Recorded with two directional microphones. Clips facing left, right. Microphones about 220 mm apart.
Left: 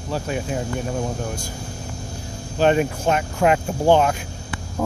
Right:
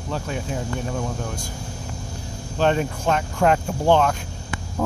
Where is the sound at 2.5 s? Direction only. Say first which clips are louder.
Left 3 dB; 10° left (ahead or behind).